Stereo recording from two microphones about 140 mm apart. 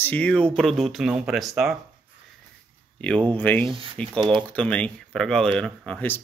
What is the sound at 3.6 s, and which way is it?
Speech, 35° right (ahead or behind).